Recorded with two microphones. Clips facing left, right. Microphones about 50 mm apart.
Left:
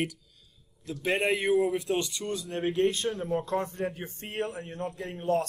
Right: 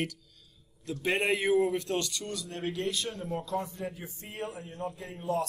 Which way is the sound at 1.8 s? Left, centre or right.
Centre.